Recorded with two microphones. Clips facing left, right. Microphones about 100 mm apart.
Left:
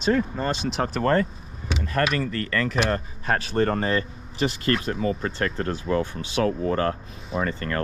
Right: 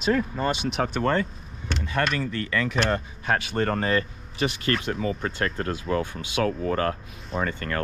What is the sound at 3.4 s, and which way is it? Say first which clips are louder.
Speech: left 2 dB; 35° left (ahead or behind).